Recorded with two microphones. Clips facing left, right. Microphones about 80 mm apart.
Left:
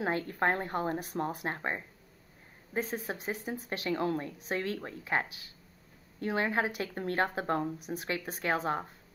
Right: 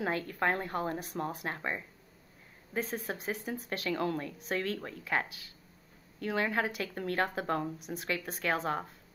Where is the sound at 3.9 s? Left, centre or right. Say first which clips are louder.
Left 2 dB; left.